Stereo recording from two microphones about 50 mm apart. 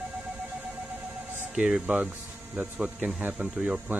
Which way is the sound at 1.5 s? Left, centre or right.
Right.